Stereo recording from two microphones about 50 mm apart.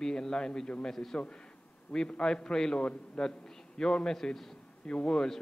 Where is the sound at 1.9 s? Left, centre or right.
Left.